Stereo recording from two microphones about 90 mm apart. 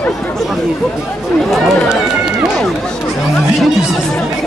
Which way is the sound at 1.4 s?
Centre (ahead or behind).